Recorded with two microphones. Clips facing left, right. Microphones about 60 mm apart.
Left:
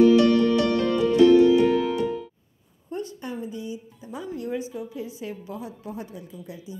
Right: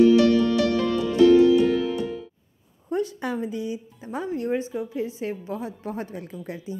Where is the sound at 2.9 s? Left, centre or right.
Right.